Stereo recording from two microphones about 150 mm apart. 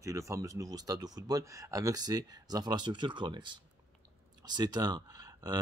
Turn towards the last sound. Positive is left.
turn(degrees=-25)  # may be behind; listen again after turning